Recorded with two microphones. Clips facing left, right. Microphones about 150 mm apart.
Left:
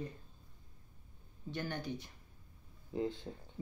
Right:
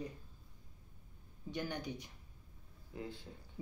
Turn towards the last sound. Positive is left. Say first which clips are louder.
# left 9 dB
turn(degrees=25)  # may be behind; listen again after turning